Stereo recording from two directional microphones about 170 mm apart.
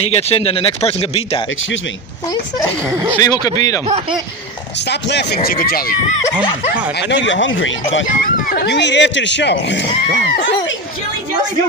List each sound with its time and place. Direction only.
0.0 s speech: 35° left (ahead or behind)
2.9 s speech: 10° right (ahead or behind)
3.2 s speech: 20° left (ahead or behind)
4.8 s speech: 85° left; by 5.9 s 60° left (ahead or behind)
7.0 s speech: 90° left